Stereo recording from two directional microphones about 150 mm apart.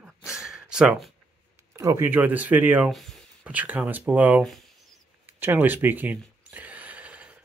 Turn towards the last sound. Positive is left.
turn(degrees=-10)  # may be behind; listen again after turning